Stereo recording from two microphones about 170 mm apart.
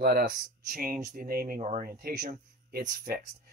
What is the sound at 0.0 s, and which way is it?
Speech, 60° right (ahead or behind).